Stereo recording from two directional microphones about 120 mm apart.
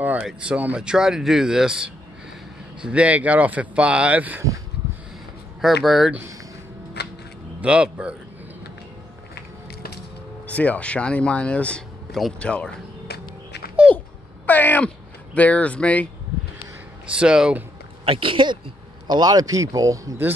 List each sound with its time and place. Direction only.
0.0 s a sound: 10° right (ahead or behind)
0.3 s speech: 10° right (ahead or behind)
5.6 s speech: centre (ahead or behind)
7.6 s speech: 10° right (ahead or behind)
10.4 s speech: 10° left (ahead or behind)
13.8 s a sound: 15° left (ahead or behind)
15.3 s speech: 10° left (ahead or behind)
17.1 s speech: 5° right (ahead or behind)
18.0 s speech: 50° right (ahead or behind)
19.0 s speech: 35° right (ahead or behind)